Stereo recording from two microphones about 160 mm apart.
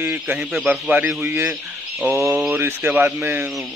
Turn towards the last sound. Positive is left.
turn(degrees=-10)  # may be behind; listen again after turning